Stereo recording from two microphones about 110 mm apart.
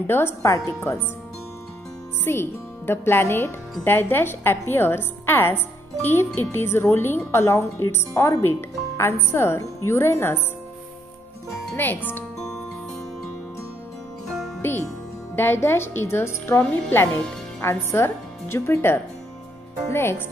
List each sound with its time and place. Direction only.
0.0 s speech: 20° left (ahead or behind)
2.3 s speech: 20° left (ahead or behind)
11.7 s speech: 20° left (ahead or behind)
14.6 s speech: 20° left (ahead or behind)